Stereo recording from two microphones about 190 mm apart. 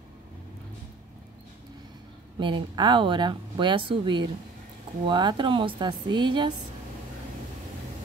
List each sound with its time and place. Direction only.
2.3 s speech: 25° right (ahead or behind)